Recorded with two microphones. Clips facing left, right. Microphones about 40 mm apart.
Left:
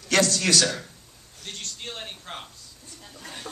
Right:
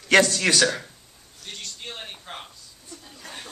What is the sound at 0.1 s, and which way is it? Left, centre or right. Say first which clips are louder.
Speech: right 3 dB; right.